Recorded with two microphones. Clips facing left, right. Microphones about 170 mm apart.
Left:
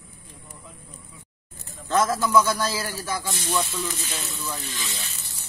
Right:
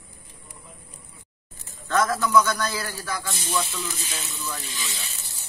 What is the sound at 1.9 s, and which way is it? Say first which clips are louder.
A man's voice: left 1 dB; 25° left (ahead or behind).